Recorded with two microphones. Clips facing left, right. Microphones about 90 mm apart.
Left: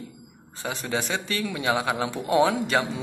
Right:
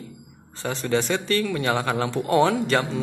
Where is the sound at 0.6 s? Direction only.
10° left (ahead or behind).